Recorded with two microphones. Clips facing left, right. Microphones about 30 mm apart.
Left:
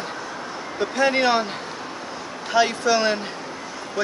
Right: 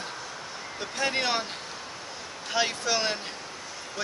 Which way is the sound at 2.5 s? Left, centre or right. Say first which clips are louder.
Left 8 dB; centre.